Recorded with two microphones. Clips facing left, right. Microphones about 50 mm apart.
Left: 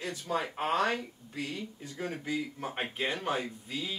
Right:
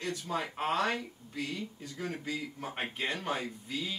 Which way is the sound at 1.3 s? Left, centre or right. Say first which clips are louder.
Even; left.